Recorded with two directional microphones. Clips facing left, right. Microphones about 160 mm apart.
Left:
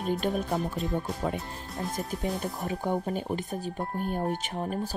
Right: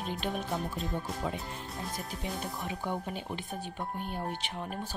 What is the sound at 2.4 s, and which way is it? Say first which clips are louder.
Speech: left 5 dB; 45° left (ahead or behind).